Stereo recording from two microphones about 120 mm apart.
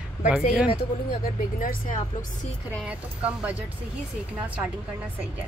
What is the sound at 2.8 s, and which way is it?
Speech, 10° right (ahead or behind).